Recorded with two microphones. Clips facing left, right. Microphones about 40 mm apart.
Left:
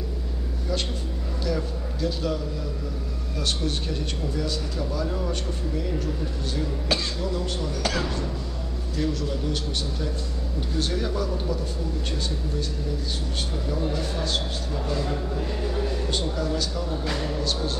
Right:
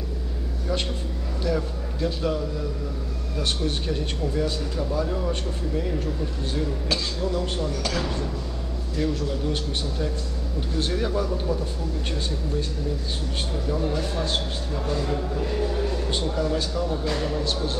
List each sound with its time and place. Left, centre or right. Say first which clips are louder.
1.4 s a man's voice: right 2 dB; right
3.6 s a man's voice: right 2 dB; right
5.0 s a man's voice: right 1 dB; centre
7.8 s speech: left 1 dB; centre
8.9 s a man's voice: right 1 dB; centre
10.9 s a man's voice: right 2 dB; centre
13.7 s a man's voice: right 2 dB; centre
16.1 s a man's voice: right 2 dB; centre
17.0 s speech: right 2 dB; centre